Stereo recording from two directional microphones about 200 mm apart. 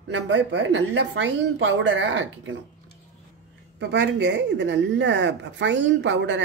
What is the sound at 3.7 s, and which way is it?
A woman's voice, 60° right (ahead or behind).